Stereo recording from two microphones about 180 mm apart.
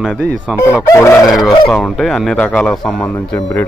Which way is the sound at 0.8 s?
15° left (ahead or behind).